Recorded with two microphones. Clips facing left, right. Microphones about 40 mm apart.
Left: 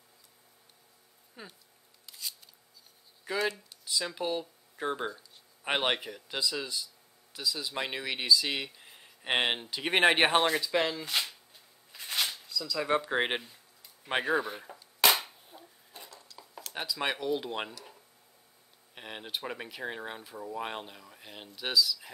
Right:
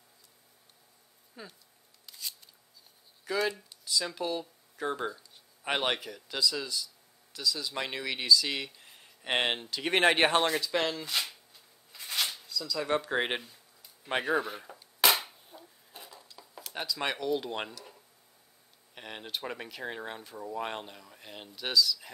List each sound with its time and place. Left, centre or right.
1.4 s speech: centre
2.0 s scissors: centre
3.3 s speech: centre
11.9 s shuffling cards: centre
12.4 s speech: centre
14.3 s cap gun: centre
15.9 s dishes: centre
16.3 s speech: centre
18.9 s speech: centre